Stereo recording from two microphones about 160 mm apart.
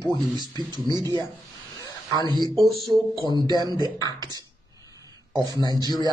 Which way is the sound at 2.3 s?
25° right (ahead or behind).